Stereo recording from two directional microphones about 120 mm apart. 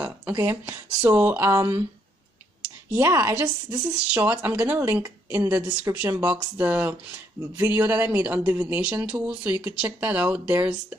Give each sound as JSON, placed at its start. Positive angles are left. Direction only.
{"t": 0.0, "sound": "a sound", "side_deg": -10}
{"t": 0.4, "sound": "speech", "side_deg": -25}
{"t": 1.0, "sound": "speech", "side_deg": -15}
{"t": 3.0, "sound": "speech", "side_deg": -20}